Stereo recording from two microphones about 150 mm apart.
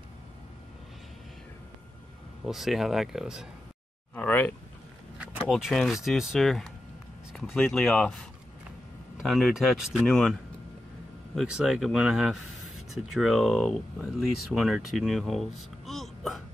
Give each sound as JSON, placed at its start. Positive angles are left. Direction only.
{"t": 2.4, "sound": "speech", "side_deg": 0}
{"t": 4.1, "sound": "speech", "side_deg": 10}
{"t": 5.5, "sound": "speech", "side_deg": 0}
{"t": 9.2, "sound": "speech", "side_deg": 0}
{"t": 11.3, "sound": "speech", "side_deg": -5}